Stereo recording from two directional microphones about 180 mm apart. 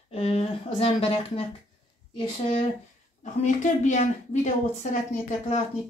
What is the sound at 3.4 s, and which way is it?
Speech, 40° left (ahead or behind).